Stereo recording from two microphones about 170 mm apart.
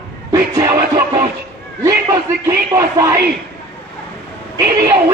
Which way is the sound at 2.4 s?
20° right (ahead or behind).